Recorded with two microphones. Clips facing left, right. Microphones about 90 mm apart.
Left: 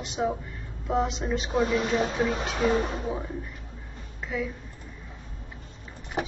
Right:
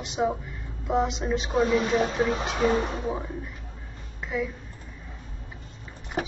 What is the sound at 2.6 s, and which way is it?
Speech, 15° right (ahead or behind).